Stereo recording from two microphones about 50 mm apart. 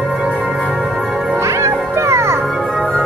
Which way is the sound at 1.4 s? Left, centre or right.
Right.